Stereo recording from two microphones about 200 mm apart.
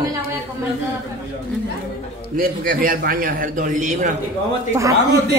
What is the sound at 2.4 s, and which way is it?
A man's voice, 45° right (ahead or behind).